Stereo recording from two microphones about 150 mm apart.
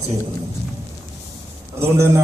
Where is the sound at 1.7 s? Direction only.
20° right (ahead or behind).